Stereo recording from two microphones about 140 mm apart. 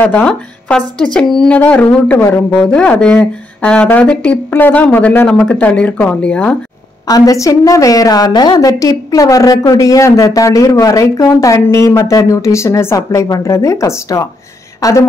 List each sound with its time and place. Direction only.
0.0 s a woman's voice: 10° left (ahead or behind)
7.1 s a woman's voice: 25° left (ahead or behind)